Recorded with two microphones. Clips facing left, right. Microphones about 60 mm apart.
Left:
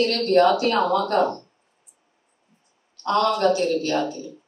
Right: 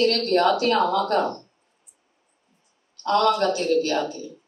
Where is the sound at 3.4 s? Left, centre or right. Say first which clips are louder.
Left 1 dB; left.